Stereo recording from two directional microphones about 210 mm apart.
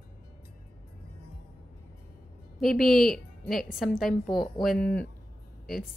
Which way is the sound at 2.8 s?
40° left (ahead or behind).